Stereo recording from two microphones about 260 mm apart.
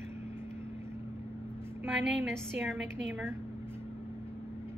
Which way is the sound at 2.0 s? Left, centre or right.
Right.